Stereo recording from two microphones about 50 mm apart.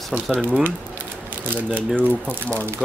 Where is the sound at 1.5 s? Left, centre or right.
Right.